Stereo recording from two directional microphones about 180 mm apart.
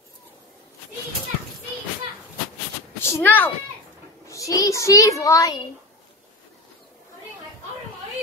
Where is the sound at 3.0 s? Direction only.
10° left (ahead or behind).